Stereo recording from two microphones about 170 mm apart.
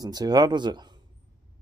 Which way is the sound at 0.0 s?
25° right (ahead or behind).